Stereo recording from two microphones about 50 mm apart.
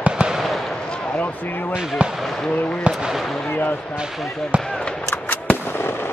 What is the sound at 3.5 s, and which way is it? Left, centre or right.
Artillery fire, left.